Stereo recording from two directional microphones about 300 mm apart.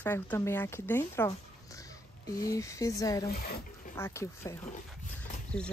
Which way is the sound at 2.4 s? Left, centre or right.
Centre.